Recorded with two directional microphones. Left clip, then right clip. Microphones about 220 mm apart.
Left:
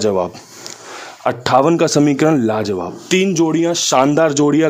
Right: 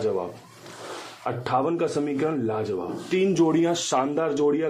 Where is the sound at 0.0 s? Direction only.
55° left (ahead or behind).